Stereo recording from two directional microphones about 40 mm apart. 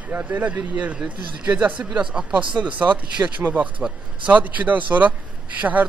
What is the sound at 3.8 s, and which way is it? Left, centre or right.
A man's voice, right.